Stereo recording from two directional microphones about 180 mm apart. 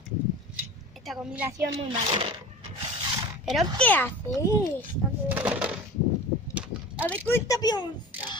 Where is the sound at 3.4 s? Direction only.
Centre (ahead or behind).